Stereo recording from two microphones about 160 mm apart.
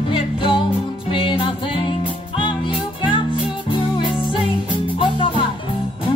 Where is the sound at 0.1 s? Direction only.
35° left (ahead or behind).